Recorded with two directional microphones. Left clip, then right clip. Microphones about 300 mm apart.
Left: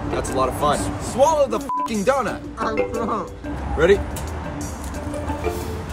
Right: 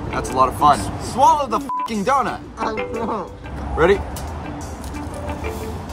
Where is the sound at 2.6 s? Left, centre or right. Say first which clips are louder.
Left 2 dB; centre.